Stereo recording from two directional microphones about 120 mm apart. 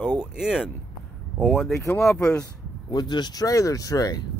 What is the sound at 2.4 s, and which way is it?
Speech, 35° left (ahead or behind).